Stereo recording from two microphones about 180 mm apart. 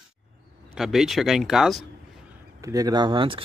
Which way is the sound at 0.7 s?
Centre (ahead or behind).